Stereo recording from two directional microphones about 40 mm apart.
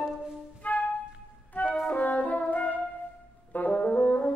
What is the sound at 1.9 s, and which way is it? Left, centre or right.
French horn, left.